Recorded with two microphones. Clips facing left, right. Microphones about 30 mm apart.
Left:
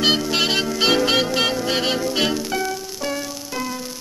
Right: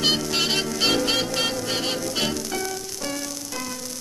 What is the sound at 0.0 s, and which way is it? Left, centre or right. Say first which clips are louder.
Music: left 4 dB; centre.